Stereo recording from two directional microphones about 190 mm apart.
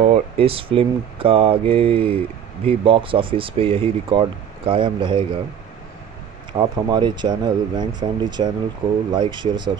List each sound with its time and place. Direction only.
0.0 s speech: 35° right (ahead or behind)
6.5 s speech: 25° right (ahead or behind)